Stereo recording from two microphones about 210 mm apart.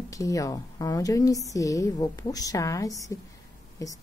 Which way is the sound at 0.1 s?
15° left (ahead or behind).